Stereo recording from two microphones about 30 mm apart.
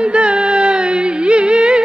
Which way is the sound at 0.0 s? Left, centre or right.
Right.